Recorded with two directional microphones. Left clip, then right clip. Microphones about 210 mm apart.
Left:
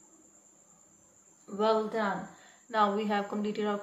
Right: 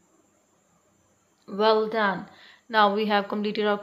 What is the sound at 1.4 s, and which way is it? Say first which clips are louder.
A woman's voice: right 6 dB; 45° right (ahead or behind).